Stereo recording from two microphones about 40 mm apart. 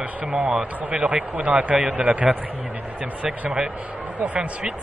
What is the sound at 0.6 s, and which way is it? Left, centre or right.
Speech, right.